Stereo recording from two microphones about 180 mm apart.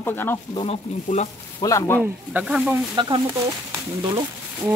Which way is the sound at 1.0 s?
40° left (ahead or behind).